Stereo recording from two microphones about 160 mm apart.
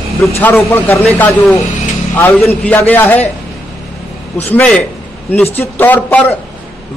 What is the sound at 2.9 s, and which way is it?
Speech, 10° left (ahead or behind).